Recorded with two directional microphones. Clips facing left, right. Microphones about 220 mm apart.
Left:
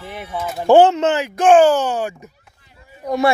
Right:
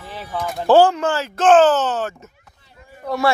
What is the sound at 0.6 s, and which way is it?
Speech, 20° left (ahead or behind).